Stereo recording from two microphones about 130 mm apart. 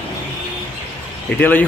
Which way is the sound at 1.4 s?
15° left (ahead or behind).